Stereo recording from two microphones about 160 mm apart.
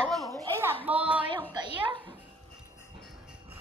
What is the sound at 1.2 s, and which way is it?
Speech, 30° right (ahead or behind).